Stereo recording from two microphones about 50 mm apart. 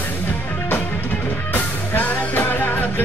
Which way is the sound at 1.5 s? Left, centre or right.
Left.